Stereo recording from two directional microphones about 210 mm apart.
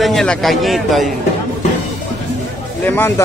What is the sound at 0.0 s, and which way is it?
A man's voice, 5° left (ahead or behind).